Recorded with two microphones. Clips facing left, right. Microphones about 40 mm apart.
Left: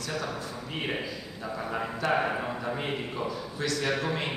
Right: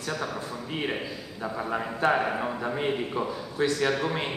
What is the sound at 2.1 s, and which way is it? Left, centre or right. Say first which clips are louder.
Speech: right 1 dB; centre.